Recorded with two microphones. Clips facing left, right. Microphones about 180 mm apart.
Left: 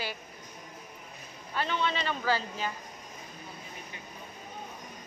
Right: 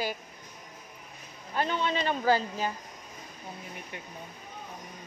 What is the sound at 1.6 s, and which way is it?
A man's voice, 45° right (ahead or behind).